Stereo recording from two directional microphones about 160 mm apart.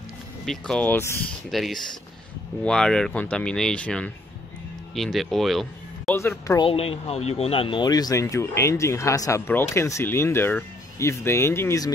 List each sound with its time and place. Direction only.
0.5 s speech: 5° left (ahead or behind)
1.5 s speech: centre (ahead or behind)
6.1 s speech: 20° left (ahead or behind)
6.6 s speech: 35° left (ahead or behind); by 11.9 s 15° left (ahead or behind)